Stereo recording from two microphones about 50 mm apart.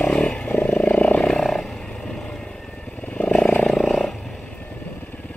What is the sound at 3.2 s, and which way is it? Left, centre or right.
Vehicle, left.